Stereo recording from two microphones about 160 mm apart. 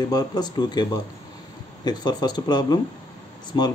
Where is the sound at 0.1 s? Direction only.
25° left (ahead or behind).